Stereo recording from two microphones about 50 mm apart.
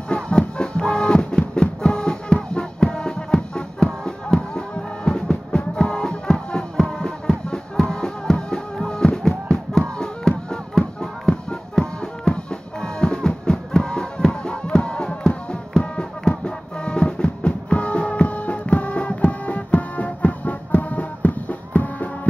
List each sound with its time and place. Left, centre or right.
0.1 s music: centre